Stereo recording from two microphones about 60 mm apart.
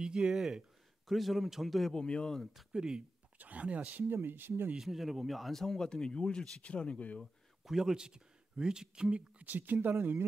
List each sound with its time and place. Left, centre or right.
0.0 s a man's voice: centre
2.5 s speech: centre
3.3 s speech: right
4.1 s speech: right
4.7 s speech: centre; by 7.2 s left
7.6 s speech: centre
9.4 s speech: right